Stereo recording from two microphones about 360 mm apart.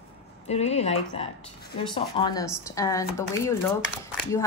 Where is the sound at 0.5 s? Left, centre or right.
Centre.